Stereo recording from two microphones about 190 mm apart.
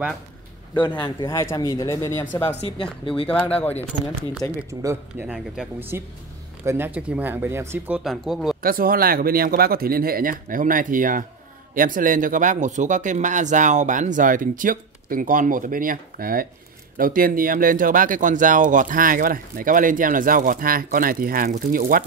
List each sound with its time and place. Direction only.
0.7 s speech: 25° left (ahead or behind)
2.6 s speech: 30° left (ahead or behind)
3.3 s speech: 5° left (ahead or behind)
5.2 s speech: 5° right (ahead or behind)
8.0 s speech: centre (ahead or behind)
8.6 s speech: 50° right (ahead or behind)